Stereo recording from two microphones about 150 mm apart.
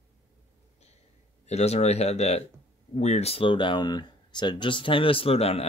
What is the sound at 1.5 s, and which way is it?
Speech, 45° left (ahead or behind).